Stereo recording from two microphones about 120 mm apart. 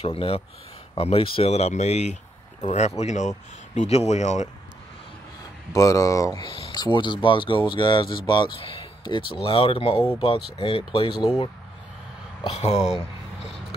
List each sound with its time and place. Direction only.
0.0 s speech: 50° left (ahead or behind); by 4.5 s 70° left (ahead or behind)
5.8 s speech: 30° left (ahead or behind); by 11.1 s 45° left (ahead or behind)
12.4 s speech: 60° left (ahead or behind)
12.7 s speech: 5° right (ahead or behind)